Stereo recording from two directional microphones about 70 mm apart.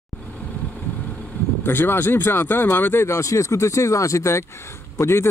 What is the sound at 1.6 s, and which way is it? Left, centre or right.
Speech, left.